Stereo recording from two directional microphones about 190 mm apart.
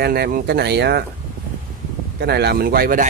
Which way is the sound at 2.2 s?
60° right (ahead or behind).